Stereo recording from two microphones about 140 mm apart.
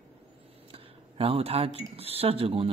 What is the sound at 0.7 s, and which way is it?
Speech, 45° right (ahead or behind).